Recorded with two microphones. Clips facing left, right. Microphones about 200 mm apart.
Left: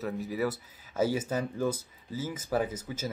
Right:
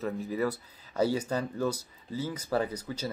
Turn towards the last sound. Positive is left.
turn(degrees=10)  # may be behind; listen again after turning